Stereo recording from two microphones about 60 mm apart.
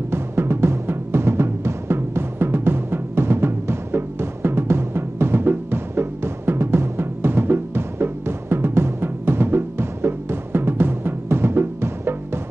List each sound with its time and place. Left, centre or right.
0.1 s timpani: right